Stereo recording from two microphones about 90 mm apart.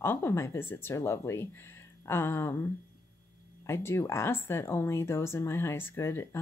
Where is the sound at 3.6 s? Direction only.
30° left (ahead or behind).